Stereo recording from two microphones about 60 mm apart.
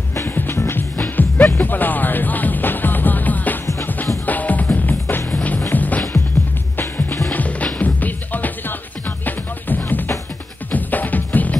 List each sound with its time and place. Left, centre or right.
0.3 s music: left